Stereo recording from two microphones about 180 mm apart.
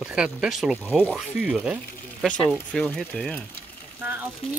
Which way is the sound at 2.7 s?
5° left (ahead or behind).